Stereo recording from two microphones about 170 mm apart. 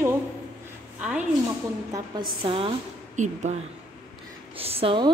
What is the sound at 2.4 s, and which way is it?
Speech, 35° right (ahead or behind).